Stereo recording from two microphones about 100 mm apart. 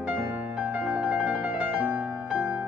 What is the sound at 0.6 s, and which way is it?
Music, 10° right (ahead or behind).